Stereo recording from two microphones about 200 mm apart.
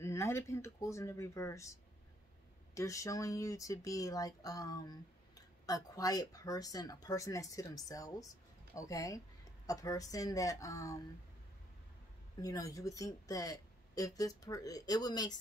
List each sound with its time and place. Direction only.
0.0 s speech: 15° left (ahead or behind)
12.4 s speech: 15° left (ahead or behind)